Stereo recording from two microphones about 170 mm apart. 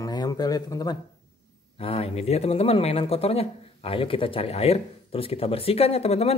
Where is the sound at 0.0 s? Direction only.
25° left (ahead or behind).